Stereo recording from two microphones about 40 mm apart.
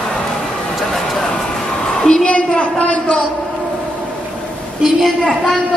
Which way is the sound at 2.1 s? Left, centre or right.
Left.